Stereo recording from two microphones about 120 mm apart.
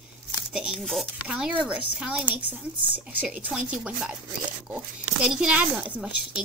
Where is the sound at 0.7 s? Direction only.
5° left (ahead or behind).